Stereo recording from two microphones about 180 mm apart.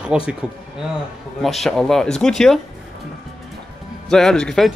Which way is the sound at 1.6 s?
Centre (ahead or behind).